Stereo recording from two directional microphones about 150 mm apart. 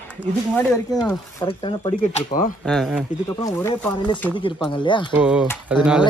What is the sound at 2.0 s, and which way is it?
Speech, 50° left (ahead or behind).